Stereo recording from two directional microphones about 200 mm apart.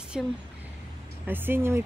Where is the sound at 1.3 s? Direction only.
10° right (ahead or behind).